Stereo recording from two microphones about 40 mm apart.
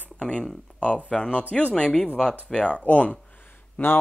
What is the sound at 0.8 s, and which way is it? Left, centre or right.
Speech, left.